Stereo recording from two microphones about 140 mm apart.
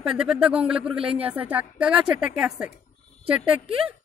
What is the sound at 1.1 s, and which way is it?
Speech, 45° right (ahead or behind).